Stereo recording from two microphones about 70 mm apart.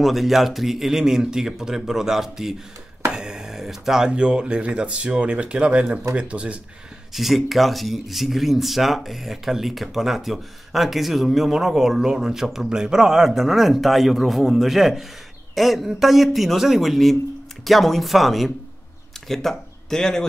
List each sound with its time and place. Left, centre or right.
0.0 s speech: centre
7.2 s speech: centre